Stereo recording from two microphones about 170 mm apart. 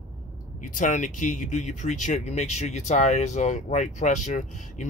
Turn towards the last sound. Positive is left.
turn(degrees=45)  # may be behind; listen again after turning